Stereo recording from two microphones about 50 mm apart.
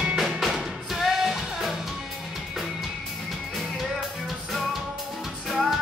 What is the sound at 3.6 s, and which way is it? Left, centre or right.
Music, centre.